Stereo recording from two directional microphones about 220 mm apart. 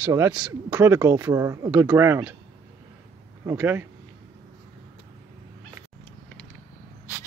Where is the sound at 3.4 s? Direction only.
10° right (ahead or behind).